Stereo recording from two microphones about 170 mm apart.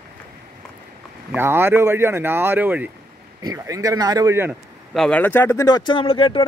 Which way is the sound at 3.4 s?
20° right (ahead or behind).